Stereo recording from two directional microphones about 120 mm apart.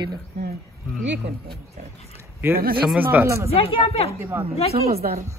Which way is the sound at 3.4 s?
55° left (ahead or behind).